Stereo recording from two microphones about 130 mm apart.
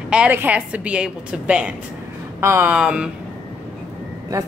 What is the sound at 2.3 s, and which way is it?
Speech, 20° right (ahead or behind).